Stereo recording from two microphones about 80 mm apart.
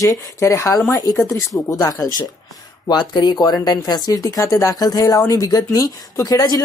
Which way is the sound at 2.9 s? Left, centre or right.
Left.